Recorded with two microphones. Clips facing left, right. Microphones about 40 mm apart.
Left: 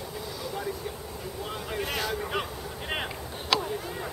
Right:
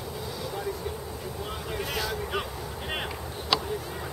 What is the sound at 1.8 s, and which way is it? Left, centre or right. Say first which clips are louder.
Vehicle: left 1 dB; left.